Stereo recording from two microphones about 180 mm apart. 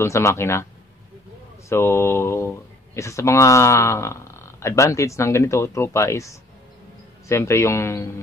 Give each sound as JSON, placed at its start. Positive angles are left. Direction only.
{"t": 0.0, "sound": "speech", "side_deg": 15}
{"t": 1.7, "sound": "speech", "side_deg": 15}